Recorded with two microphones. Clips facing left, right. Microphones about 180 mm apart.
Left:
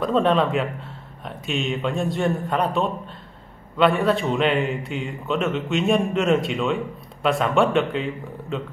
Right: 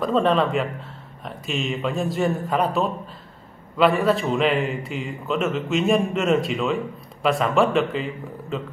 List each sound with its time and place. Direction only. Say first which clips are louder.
0.0 s a man's voice: even; centre (ahead or behind)